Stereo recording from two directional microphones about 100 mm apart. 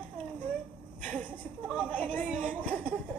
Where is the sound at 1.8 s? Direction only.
15° left (ahead or behind).